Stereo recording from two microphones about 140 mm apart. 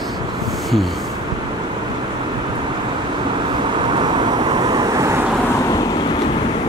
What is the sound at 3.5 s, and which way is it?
Vehicle, 35° right (ahead or behind).